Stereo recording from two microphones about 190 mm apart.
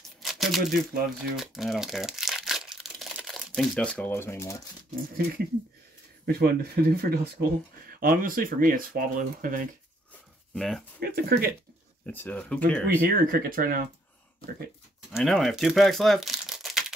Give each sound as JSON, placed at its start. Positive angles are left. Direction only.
{"t": 0.2, "sound": "speech", "side_deg": 0}
{"t": 6.2, "sound": "speech", "side_deg": -55}
{"t": 10.5, "sound": "speech", "side_deg": 0}
{"t": 11.0, "sound": "speech", "side_deg": -55}
{"t": 12.1, "sound": "speech", "side_deg": 10}
{"t": 12.8, "sound": "speech", "side_deg": -50}
{"t": 15.1, "sound": "speech", "side_deg": 0}